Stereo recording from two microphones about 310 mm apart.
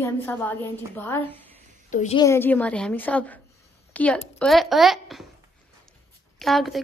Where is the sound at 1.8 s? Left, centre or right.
Left.